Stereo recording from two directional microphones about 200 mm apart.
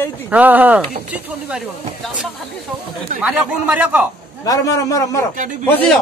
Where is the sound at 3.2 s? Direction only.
5° right (ahead or behind).